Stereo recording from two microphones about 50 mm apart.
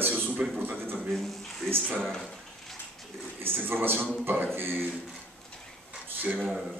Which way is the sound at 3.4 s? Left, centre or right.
Right.